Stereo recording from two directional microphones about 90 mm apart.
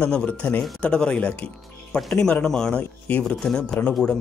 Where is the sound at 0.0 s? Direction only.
15° left (ahead or behind).